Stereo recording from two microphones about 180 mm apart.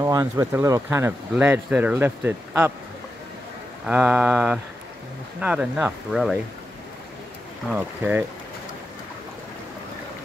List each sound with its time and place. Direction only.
0.0 s speech: 15° right (ahead or behind)
3.8 s mantra: 5° right (ahead or behind)
5.4 s speech: 5° right (ahead or behind)
7.7 s speech: 10° right (ahead or behind)